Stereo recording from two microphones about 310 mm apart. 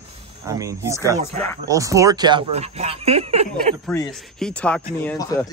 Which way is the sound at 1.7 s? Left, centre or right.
Centre.